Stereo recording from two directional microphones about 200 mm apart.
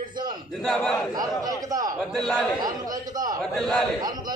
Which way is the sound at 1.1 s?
20° right (ahead or behind).